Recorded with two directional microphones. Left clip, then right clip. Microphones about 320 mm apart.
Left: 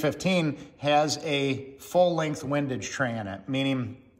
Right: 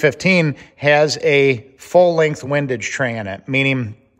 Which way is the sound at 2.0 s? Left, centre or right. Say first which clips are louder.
Right 10 dB; centre.